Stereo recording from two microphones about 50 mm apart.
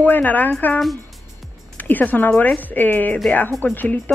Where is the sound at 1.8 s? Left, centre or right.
Left.